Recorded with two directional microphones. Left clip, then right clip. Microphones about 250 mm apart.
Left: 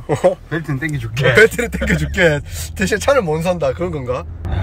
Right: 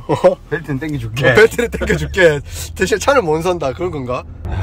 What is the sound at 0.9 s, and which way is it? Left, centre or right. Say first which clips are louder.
Speech: right 3 dB; right.